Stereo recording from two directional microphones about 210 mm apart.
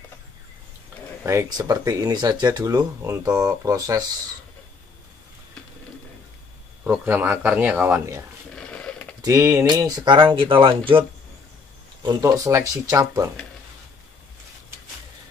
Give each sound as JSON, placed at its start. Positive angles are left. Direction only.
{"t": 1.2, "sound": "speech", "side_deg": -15}
{"t": 6.8, "sound": "speech", "side_deg": -10}
{"t": 8.5, "sound": "a sound", "side_deg": 5}
{"t": 9.2, "sound": "speech", "side_deg": -15}
{"t": 12.0, "sound": "speech", "side_deg": -20}